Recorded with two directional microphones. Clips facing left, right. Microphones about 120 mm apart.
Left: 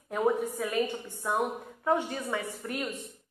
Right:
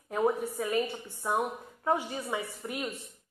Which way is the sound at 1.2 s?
5° right (ahead or behind).